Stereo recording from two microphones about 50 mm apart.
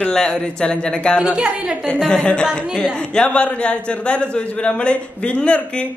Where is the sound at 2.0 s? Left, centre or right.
Left.